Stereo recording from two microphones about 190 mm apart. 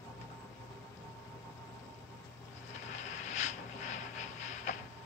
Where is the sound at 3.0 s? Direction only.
40° left (ahead or behind).